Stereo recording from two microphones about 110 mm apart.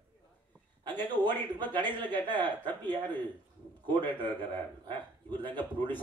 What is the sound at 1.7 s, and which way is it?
Speech, 15° left (ahead or behind).